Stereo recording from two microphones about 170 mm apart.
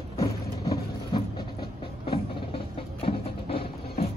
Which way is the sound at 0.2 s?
25° left (ahead or behind).